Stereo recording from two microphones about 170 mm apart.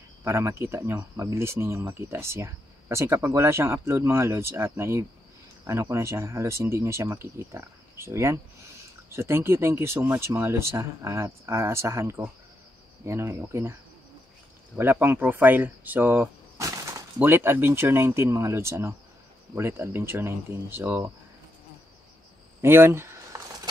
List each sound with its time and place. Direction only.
0.2 s speech: 15° right (ahead or behind)
14.8 s speech: 10° right (ahead or behind)
22.6 s a sound: 15° right (ahead or behind)